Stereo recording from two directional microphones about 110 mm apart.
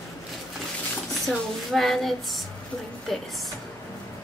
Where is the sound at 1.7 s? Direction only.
Centre (ahead or behind).